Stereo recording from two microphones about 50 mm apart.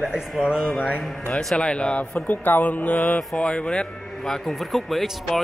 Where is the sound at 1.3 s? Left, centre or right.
Centre.